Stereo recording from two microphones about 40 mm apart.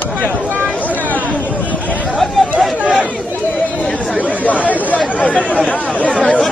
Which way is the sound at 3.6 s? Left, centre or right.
Left.